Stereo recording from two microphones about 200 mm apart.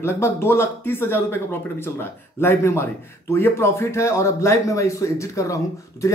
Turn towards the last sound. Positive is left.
turn(degrees=15)  # may be behind; listen again after turning